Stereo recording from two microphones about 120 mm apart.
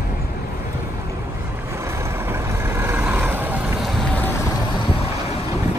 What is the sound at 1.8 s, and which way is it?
Vehicle, 20° right (ahead or behind).